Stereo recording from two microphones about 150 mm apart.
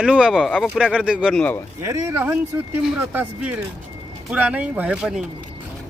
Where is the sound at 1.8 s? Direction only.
20° right (ahead or behind).